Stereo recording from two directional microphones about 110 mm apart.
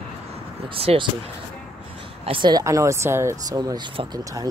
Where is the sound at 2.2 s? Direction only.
45° right (ahead or behind).